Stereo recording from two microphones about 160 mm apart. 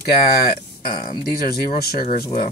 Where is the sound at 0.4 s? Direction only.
70° left (ahead or behind).